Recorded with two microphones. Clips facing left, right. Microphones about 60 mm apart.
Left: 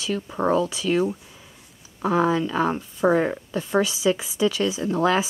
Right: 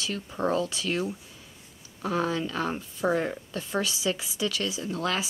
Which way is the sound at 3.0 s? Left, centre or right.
Left.